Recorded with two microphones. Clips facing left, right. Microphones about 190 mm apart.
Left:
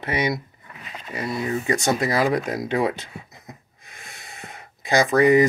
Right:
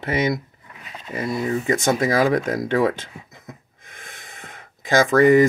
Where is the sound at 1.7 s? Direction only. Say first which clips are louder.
Right 2 dB; 50° right (ahead or behind).